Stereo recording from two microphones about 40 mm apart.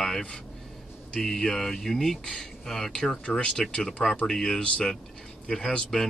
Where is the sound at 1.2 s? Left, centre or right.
Centre.